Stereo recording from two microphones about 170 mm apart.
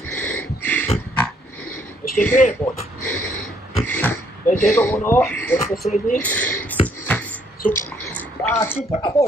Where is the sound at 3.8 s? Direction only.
10° left (ahead or behind).